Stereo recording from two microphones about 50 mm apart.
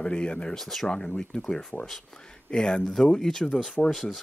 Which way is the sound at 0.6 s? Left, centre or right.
Centre.